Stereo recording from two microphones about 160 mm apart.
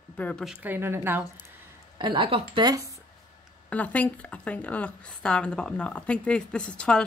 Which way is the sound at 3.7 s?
10° left (ahead or behind).